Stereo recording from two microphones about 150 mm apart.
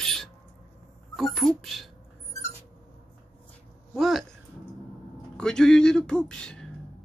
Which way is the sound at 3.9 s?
Centre (ahead or behind).